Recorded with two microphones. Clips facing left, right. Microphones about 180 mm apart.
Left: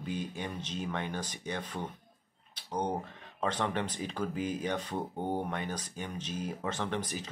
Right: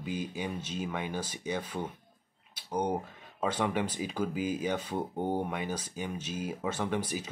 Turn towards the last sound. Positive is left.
turn(degrees=-10)  # may be behind; listen again after turning